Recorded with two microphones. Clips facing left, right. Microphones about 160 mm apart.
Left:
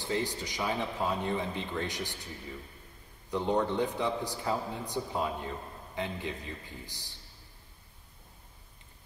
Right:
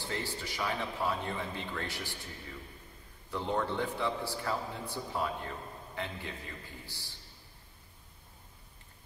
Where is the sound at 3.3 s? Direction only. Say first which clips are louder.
Left 4 dB; 20° left (ahead or behind).